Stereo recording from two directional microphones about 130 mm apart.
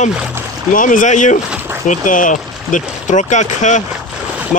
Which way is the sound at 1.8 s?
85° left.